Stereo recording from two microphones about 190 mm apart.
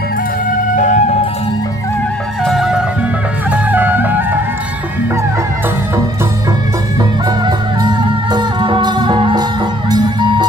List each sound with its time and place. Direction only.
0.7 s music: 40° left (ahead or behind)
2.4 s music: centre (ahead or behind)
7.0 s music: 25° right (ahead or behind)